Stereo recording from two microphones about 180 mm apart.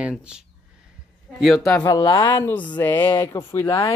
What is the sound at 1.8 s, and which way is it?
Speech, 20° left (ahead or behind).